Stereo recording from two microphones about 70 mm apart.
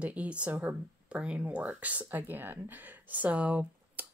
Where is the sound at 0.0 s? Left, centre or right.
Centre.